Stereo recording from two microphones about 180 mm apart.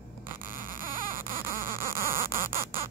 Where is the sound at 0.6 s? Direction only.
50° right (ahead or behind).